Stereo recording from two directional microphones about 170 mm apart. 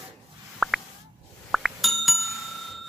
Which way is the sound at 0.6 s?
Centre (ahead or behind).